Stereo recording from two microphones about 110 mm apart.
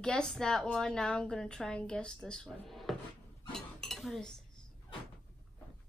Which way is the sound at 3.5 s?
5° left (ahead or behind).